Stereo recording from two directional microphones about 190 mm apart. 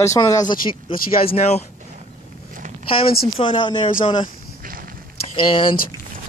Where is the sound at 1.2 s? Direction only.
30° left (ahead or behind).